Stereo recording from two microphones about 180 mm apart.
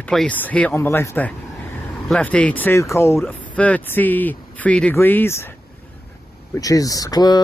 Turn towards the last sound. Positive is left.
turn(degrees=20)  # may be behind; listen again after turning